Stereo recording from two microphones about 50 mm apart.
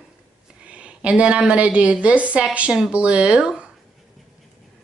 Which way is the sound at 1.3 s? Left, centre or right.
Right.